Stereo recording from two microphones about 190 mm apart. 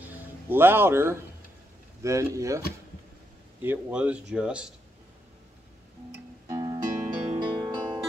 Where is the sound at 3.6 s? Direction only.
10° right (ahead or behind).